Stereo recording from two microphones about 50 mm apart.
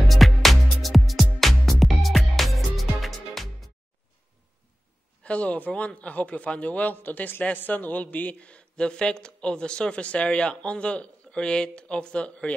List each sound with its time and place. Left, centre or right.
0.1 s music: centre
5.2 s speech: left